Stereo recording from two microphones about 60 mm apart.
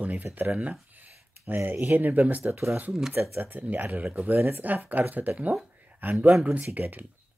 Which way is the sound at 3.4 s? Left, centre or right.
Right.